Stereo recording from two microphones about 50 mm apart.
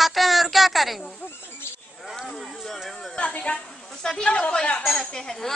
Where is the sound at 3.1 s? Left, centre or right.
Left.